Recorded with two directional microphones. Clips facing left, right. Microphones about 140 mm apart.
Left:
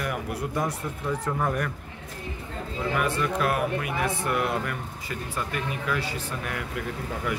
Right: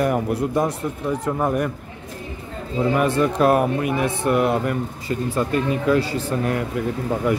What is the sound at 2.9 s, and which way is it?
Speech, 30° right (ahead or behind).